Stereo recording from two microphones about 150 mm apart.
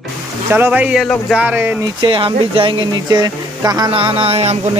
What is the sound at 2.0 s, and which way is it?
Speech, 35° right (ahead or behind).